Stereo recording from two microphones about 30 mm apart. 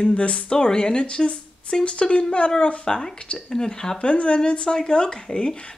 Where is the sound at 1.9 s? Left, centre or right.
Left.